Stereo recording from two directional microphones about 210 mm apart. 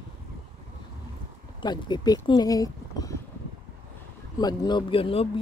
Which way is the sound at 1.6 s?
20° left (ahead or behind).